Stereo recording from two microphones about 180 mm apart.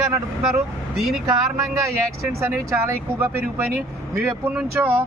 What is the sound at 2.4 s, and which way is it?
Speech, 15° right (ahead or behind).